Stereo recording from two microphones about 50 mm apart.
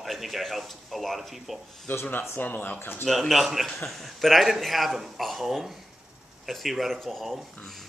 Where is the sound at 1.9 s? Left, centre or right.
Left.